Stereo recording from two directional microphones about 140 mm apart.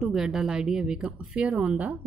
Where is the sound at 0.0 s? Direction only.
5° right (ahead or behind).